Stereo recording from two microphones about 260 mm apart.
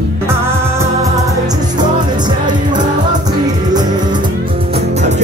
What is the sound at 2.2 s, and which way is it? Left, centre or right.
Music, centre.